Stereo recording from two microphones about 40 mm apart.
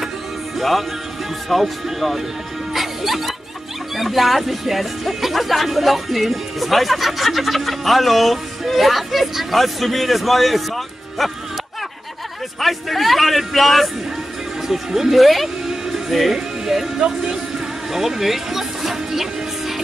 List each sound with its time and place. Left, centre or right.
0.6 s music: centre
1.5 s speech: centre
2.7 s music: centre
3.9 s speech: centre
12.5 s speech: centre
17.9 s music: centre